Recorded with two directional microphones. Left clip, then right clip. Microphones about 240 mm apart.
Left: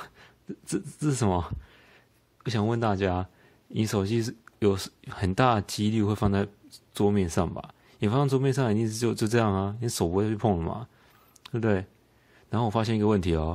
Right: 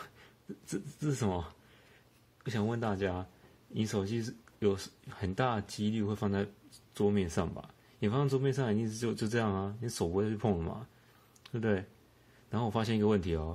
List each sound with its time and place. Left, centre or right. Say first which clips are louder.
0.7 s speech: left 7 dB; left